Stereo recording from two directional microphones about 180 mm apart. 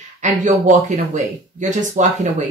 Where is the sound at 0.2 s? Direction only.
45° right (ahead or behind).